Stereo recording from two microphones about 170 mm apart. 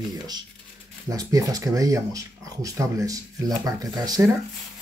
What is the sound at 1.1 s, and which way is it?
Speech, 20° right (ahead or behind).